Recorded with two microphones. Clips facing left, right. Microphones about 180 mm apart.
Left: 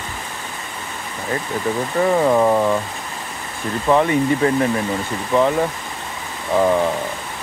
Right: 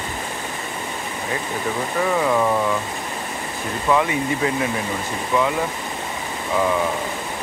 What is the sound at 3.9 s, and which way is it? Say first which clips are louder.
Speech: left 4 dB; 40° left (ahead or behind).